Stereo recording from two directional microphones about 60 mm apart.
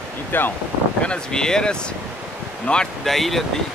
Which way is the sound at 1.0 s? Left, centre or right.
Centre.